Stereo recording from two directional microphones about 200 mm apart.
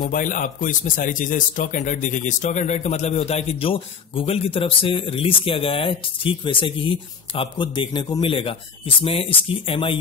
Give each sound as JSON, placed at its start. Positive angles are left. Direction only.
{"t": 0.1, "sound": "speech", "side_deg": 40}